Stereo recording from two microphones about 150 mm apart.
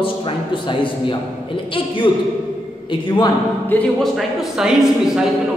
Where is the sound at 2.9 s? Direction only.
30° left (ahead or behind).